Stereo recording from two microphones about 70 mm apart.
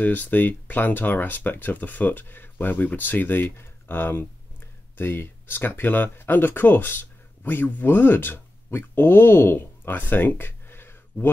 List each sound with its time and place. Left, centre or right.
0.0 s speech: left